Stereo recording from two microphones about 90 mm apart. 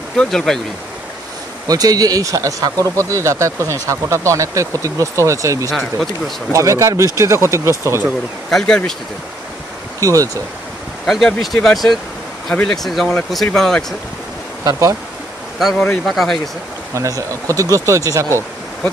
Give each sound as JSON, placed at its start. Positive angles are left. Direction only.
{"t": 0.2, "sound": "speech", "side_deg": 5}
{"t": 1.7, "sound": "speech", "side_deg": -45}
{"t": 5.7, "sound": "speech", "side_deg": 0}
{"t": 6.5, "sound": "speech", "side_deg": -35}
{"t": 8.5, "sound": "speech", "side_deg": 5}
{"t": 9.9, "sound": "speech", "side_deg": -35}
{"t": 11.1, "sound": "speech", "side_deg": 0}
{"t": 14.6, "sound": "speech", "side_deg": -35}
{"t": 16.1, "sound": "speech", "side_deg": 0}
{"t": 16.9, "sound": "speech", "side_deg": -35}